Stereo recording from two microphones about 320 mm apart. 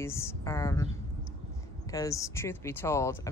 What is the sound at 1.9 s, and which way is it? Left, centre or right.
Speech, centre.